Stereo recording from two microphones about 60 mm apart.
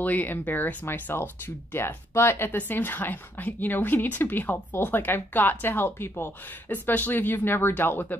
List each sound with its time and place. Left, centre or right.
0.0 s speech: left
2.7 s speech: left